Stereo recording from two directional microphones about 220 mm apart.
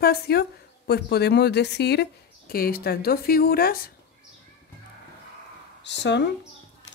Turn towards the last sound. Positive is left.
turn(degrees=50)  # may be behind; listen again after turning